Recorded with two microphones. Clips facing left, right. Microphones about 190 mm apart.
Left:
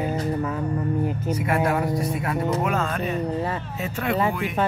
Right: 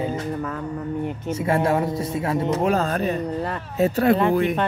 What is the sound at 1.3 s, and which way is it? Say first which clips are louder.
Speech: right 3 dB; 25° right (ahead or behind).